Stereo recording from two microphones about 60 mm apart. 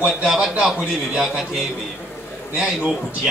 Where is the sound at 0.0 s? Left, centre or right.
Centre.